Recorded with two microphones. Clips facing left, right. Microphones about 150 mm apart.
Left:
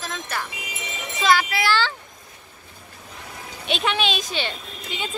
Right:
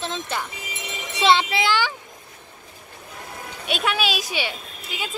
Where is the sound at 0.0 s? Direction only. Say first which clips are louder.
Right 2 dB; 25° right (ahead or behind).